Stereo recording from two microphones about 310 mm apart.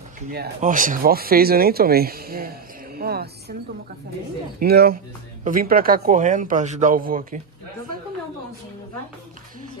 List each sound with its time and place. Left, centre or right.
0.3 s a woman's voice: right
4.6 s speech: right